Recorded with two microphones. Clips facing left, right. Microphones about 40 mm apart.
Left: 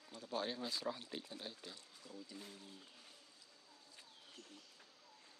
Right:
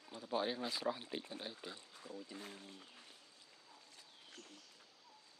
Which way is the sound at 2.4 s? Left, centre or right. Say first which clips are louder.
Right 3 dB; right.